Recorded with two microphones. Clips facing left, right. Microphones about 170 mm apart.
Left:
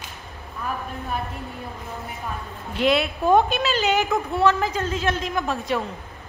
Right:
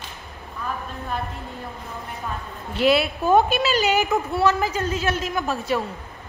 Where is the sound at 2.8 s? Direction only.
5° right (ahead or behind).